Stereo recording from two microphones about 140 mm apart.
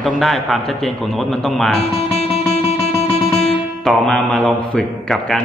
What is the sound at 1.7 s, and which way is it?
Music, 45° left (ahead or behind).